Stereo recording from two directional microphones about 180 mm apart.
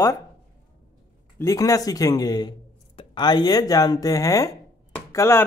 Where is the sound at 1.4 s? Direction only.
20° left (ahead or behind).